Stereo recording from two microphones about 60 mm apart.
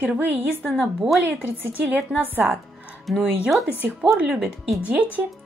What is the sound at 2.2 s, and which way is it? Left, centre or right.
Speech, right.